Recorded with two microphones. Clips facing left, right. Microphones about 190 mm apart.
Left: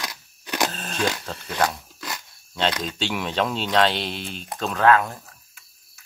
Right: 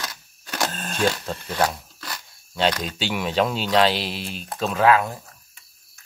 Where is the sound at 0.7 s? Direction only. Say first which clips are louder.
Right 3 dB; centre (ahead or behind).